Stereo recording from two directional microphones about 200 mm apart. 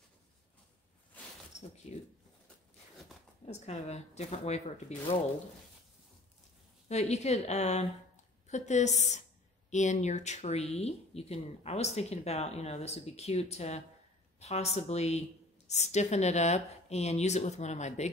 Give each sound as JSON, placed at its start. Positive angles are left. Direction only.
{"t": 3.4, "sound": "speech", "side_deg": 35}
{"t": 6.9, "sound": "speech", "side_deg": 35}